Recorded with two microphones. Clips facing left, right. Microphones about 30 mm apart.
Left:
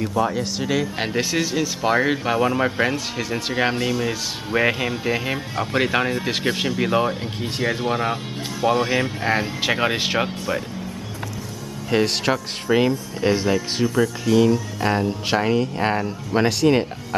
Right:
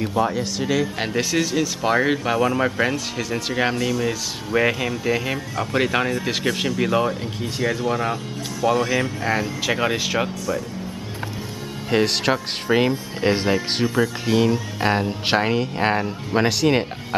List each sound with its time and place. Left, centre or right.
0.2 s speech: centre
7.4 s speech: left
11.9 s speech: centre